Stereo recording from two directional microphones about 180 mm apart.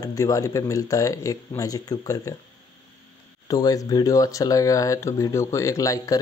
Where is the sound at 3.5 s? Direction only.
20° left (ahead or behind).